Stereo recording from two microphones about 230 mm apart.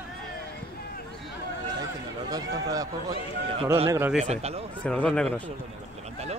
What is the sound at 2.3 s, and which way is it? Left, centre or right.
Run, centre.